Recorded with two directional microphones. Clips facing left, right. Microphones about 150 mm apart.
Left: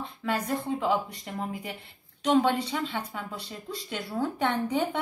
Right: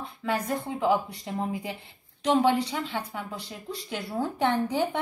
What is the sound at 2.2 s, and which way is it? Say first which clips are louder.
A woman's voice: right 1 dB; 10° right (ahead or behind).